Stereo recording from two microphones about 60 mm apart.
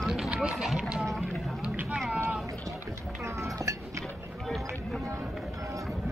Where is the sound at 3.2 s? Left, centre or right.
Right.